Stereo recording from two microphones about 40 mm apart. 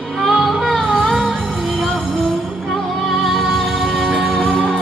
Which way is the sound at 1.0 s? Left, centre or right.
Centre.